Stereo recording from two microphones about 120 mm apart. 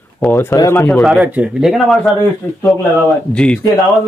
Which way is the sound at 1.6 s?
Centre (ahead or behind).